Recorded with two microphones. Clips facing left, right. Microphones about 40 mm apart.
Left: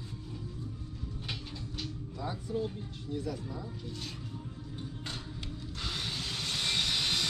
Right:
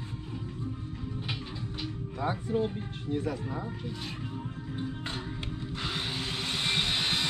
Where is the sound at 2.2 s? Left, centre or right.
Right.